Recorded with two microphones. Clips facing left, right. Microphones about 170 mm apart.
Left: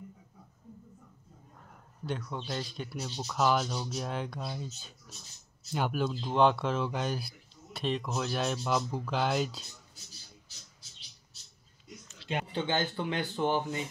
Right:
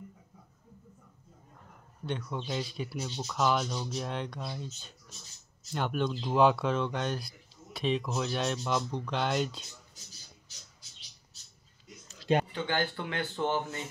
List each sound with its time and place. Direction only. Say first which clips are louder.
2.0 s speech: right 1 dB; centre (ahead or behind)
5.7 s speech: even; 5° left (ahead or behind)
12.1 s a sound: right 8 dB; 40° right (ahead or behind)
12.5 s speech: left 1 dB; 20° left (ahead or behind)